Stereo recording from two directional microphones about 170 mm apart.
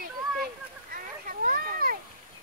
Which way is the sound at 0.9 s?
55° right (ahead or behind).